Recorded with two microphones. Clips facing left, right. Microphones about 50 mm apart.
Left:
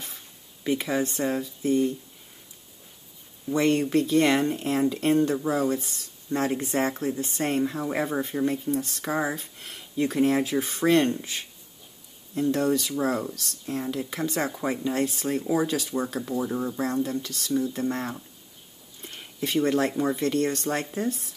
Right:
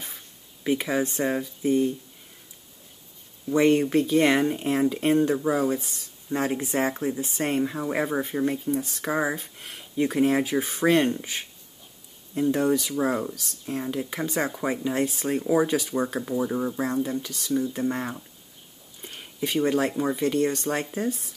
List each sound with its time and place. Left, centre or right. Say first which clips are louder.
0.7 s speech: right 1 dB; centre
3.5 s speech: right 2 dB; centre